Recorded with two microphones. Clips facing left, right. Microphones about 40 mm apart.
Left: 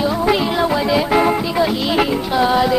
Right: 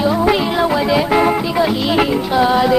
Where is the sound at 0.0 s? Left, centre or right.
Right.